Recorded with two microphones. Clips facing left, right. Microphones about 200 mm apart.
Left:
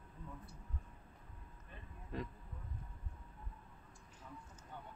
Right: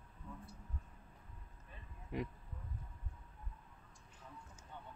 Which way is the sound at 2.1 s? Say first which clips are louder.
Right 3 dB; 15° right (ahead or behind).